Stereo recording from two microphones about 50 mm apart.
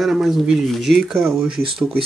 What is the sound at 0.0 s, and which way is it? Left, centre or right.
Speech, centre.